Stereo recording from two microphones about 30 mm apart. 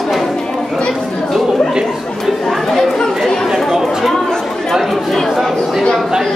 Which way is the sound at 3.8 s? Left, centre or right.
Centre.